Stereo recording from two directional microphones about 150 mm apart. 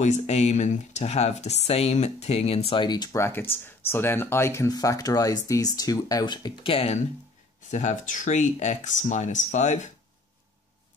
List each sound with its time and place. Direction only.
0.0 s speech: 50° left (ahead or behind)
7.7 s speech: 55° left (ahead or behind)